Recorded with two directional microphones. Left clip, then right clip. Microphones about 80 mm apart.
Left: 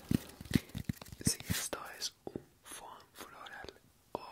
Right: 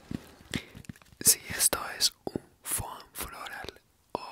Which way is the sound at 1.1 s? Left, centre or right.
Right.